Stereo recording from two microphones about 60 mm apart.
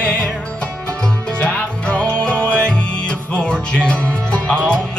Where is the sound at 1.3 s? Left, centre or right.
Left.